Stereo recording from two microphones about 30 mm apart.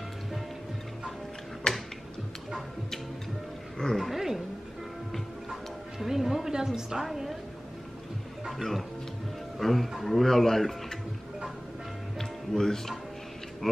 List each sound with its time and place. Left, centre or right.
1.7 s music: left
4.0 s speech: centre
5.9 s a woman's voice: centre
7.1 s speech: centre
9.6 s speech: centre
10.2 s speech: centre
12.2 s music: centre